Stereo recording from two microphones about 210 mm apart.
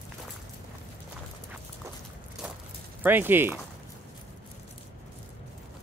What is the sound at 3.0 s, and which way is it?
Speech, 10° right (ahead or behind).